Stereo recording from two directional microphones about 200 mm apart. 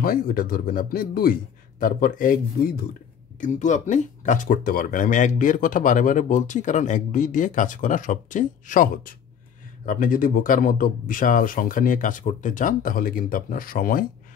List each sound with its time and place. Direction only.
0.0 s speech: 45° left (ahead or behind)